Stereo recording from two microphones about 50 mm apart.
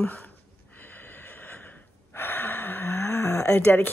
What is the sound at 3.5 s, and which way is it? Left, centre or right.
Speech, left.